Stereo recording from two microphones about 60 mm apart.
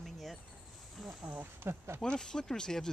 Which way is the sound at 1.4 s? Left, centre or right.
Right.